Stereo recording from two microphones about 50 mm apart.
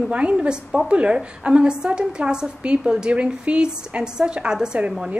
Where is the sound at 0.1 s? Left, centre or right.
Right.